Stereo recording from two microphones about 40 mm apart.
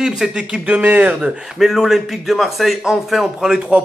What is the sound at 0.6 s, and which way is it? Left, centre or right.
Speech, right.